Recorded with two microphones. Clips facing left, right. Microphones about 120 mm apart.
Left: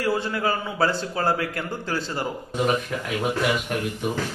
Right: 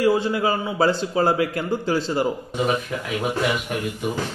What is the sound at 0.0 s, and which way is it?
A man's voice, 15° right (ahead or behind).